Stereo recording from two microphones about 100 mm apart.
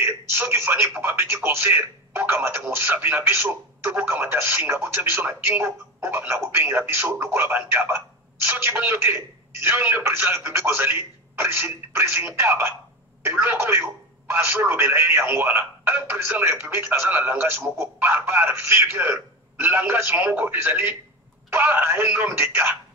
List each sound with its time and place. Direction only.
0.0 s speech: 25° right (ahead or behind)